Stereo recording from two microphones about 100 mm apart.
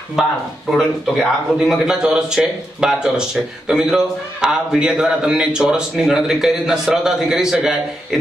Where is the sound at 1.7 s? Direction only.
5° right (ahead or behind).